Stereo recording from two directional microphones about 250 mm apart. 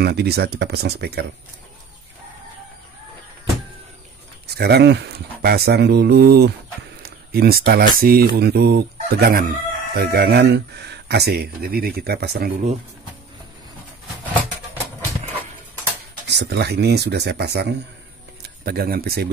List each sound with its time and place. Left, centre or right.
0.0 s speech: right
4.5 s speech: right
16.3 s speech: right